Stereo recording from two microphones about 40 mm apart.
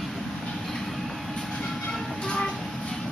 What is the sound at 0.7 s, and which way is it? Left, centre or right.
Train, centre.